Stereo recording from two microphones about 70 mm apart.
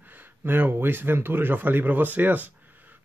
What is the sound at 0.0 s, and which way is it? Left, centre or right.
Speech, right.